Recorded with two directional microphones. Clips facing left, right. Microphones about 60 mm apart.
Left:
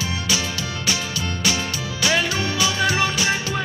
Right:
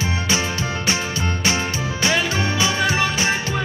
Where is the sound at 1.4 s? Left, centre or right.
Right.